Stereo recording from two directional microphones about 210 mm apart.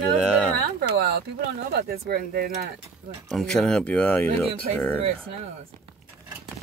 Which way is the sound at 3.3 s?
Centre (ahead or behind).